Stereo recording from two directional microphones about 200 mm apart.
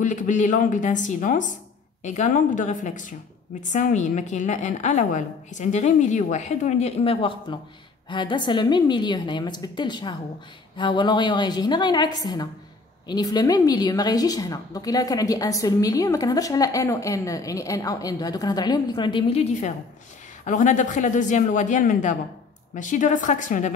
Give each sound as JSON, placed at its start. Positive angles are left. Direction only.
{"t": 0.0, "sound": "a woman's voice", "side_deg": 40}
{"t": 20.4, "sound": "a woman's voice", "side_deg": 40}